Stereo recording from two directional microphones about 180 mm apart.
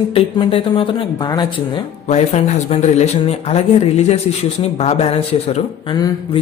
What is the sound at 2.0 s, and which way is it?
Speech, 35° left (ahead or behind).